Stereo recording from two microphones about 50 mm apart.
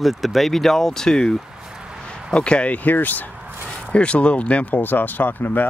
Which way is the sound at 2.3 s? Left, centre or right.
Centre.